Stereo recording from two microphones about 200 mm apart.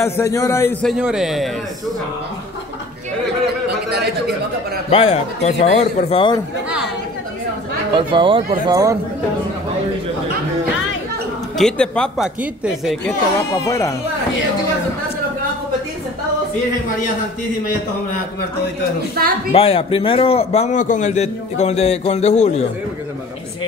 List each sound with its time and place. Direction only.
0.0 s a man's voice: 15° left (ahead or behind)
0.8 s speech: centre (ahead or behind)
4.9 s a man's voice: 30° left (ahead or behind)
7.9 s speech: 25° right (ahead or behind)
11.5 s speech: 5° left (ahead or behind)
13.7 s a man's voice: 15° left (ahead or behind)
19.2 s a woman's voice: 50° right (ahead or behind)
19.5 s a man's voice: 30° left (ahead or behind)